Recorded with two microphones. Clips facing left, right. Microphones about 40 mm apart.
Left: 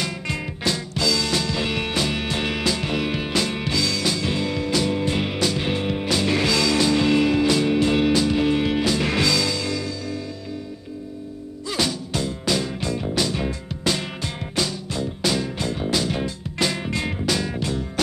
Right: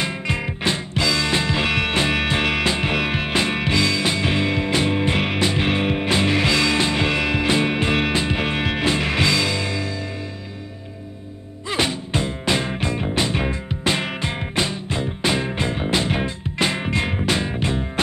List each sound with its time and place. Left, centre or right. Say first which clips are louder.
0.0 s music: right 3 dB; right
11.6 s music: right 2 dB; right